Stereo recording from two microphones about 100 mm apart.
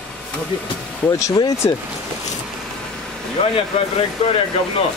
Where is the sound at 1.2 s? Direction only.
35° left (ahead or behind).